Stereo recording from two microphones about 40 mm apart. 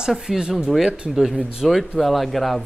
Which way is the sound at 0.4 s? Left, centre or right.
Right.